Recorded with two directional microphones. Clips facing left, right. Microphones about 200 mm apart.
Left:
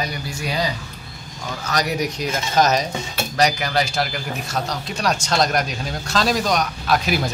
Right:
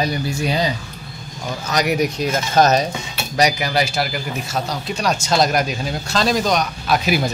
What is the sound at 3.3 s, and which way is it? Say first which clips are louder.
Speech: right 2 dB; 10° right (ahead or behind).